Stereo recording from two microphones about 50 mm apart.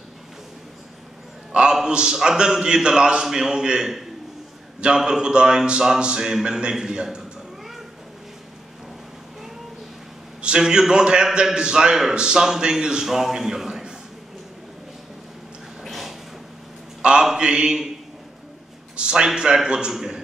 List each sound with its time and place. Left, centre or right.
1.5 s a man's voice: centre
4.7 s a sound: centre
10.4 s a man's voice: centre
15.8 s a sound: centre
17.0 s a man's voice: centre
18.9 s a man's voice: centre